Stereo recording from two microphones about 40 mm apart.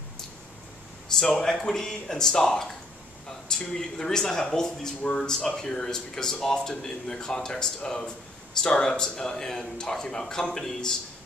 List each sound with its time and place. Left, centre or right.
1.4 s speech: centre